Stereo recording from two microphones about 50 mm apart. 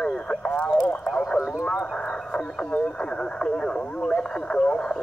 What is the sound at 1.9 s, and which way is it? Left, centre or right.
Radio, centre.